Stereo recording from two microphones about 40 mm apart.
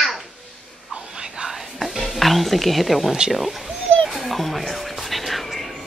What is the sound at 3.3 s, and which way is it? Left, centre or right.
Speech, centre.